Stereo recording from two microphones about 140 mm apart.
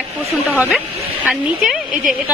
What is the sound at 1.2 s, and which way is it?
Speech, 5° right (ahead or behind).